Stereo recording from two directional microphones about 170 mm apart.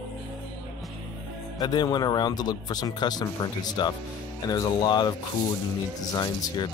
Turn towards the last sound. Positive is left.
turn(degrees=25)  # may be behind; listen again after turning